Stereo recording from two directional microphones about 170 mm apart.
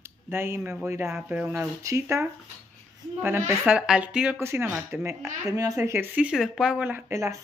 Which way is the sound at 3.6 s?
5° right (ahead or behind).